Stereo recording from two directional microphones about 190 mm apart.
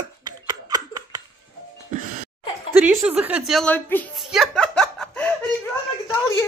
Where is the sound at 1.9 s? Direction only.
40° right (ahead or behind).